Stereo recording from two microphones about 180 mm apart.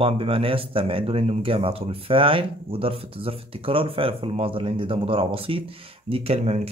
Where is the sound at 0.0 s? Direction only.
30° right (ahead or behind).